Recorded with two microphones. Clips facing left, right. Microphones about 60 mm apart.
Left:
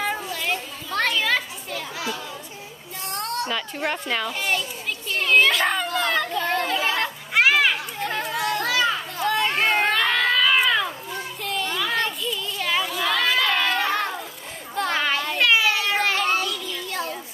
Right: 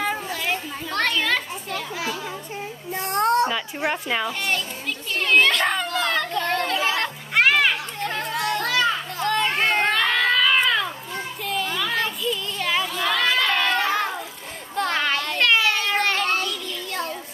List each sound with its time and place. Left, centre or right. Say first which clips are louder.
0.0 s children playing: right 1 dB; centre
3.0 s a sound: right 9 dB; right
3.4 s speech: right 2 dB; centre
4.3 s a child's voice: even; centre
5.2 s children playing: even; centre
14.8 s child singing: even; centre